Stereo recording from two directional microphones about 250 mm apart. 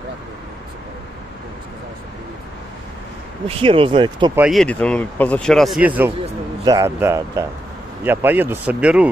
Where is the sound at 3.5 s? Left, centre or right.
Right.